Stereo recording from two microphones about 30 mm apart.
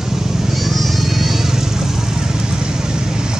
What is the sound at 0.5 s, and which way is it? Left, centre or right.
Music, centre.